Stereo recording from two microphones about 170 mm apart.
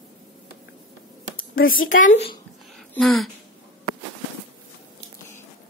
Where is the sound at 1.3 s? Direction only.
55° left (ahead or behind).